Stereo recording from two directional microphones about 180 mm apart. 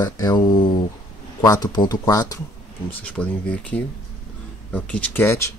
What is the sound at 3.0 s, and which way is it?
Speech, 10° left (ahead or behind).